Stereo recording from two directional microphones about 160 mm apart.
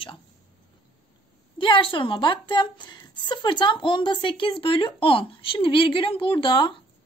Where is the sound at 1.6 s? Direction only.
30° left (ahead or behind).